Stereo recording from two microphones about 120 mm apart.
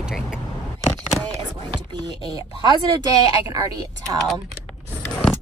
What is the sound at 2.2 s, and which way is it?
Speech, 35° right (ahead or behind).